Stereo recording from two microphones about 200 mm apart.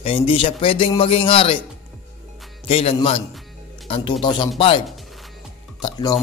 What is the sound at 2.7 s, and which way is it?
A man's voice, 25° left (ahead or behind).